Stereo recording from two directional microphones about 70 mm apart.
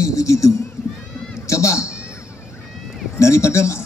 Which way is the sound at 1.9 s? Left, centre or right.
Centre.